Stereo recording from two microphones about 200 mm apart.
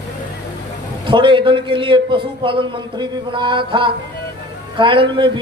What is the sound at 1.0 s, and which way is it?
A man's voice, 25° right (ahead or behind).